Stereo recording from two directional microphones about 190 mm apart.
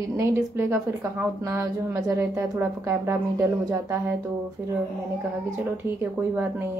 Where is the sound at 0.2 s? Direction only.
15° right (ahead or behind).